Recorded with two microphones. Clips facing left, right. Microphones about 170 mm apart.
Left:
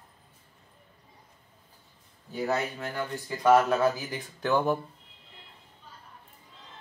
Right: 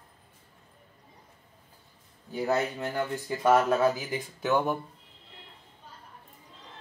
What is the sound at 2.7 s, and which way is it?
Speech, 20° right (ahead or behind).